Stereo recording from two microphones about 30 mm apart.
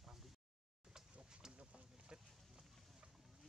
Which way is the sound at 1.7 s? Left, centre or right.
Right.